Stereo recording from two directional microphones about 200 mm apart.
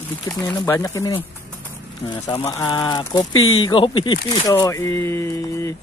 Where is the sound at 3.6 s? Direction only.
25° left (ahead or behind).